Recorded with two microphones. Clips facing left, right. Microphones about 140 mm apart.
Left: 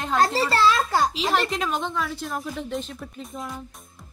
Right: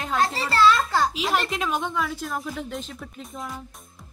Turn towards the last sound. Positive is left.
turn(degrees=0)  # may be behind; listen again after turning